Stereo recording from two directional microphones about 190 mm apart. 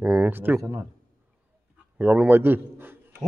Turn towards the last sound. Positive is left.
turn(degrees=-10)  # may be behind; listen again after turning